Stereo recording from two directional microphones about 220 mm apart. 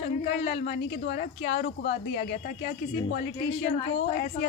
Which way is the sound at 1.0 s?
50° left (ahead or behind).